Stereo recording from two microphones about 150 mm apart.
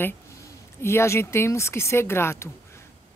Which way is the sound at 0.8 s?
20° left (ahead or behind).